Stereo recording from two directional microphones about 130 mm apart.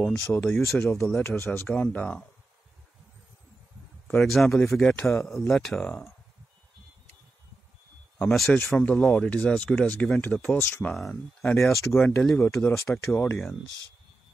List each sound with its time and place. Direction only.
0.5 s speech: 15° left (ahead or behind)
4.2 s speech: centre (ahead or behind)
5.0 s speech: 20° left (ahead or behind)
5.5 s speech: centre (ahead or behind)
8.3 s speech: 5° left (ahead or behind)
8.6 s speech: 15° left (ahead or behind)
11.4 s speech: 20° left (ahead or behind)